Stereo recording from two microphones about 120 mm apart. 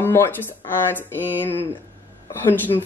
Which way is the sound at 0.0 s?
20° left (ahead or behind).